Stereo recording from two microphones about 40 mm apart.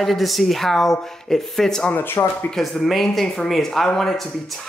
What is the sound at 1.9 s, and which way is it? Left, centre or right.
Speech, left.